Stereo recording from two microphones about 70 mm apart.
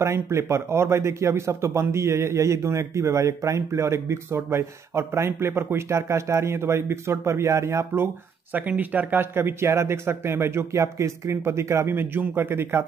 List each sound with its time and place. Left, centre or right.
0.0 s speech: right
8.5 s speech: right